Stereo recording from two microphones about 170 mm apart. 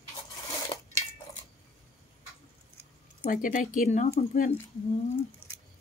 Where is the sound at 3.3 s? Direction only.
50° left (ahead or behind).